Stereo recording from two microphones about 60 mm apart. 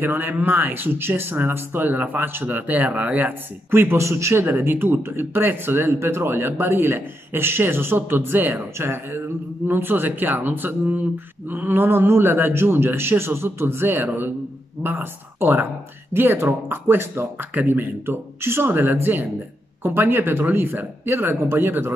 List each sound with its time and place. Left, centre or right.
0.0 s speech: right
4.0 s a man's voice: right
4.5 s speech: right